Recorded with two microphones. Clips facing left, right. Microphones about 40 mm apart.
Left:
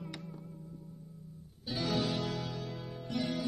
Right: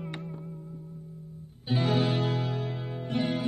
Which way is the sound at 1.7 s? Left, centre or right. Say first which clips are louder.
Right 7 dB; right.